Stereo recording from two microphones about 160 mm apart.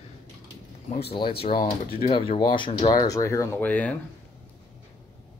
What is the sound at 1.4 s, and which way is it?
Speech, 35° left (ahead or behind).